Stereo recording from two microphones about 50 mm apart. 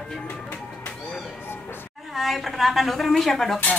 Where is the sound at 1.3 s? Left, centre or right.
Left.